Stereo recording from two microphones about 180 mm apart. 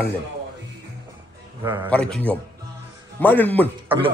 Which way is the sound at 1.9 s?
5° left (ahead or behind).